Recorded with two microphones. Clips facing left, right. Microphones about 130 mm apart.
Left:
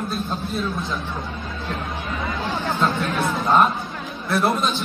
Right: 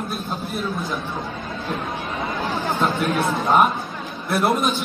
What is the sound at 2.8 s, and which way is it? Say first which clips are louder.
Speech: right 1 dB; 10° right (ahead or behind).